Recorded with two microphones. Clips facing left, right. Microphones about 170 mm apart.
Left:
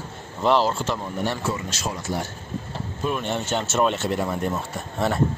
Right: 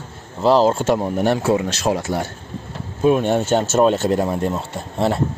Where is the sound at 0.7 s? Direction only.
50° right (ahead or behind).